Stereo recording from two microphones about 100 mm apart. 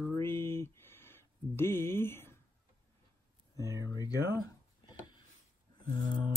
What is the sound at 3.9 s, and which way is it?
Speech, 40° left (ahead or behind).